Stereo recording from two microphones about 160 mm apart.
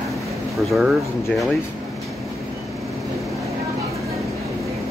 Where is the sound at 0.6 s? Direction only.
Centre (ahead or behind).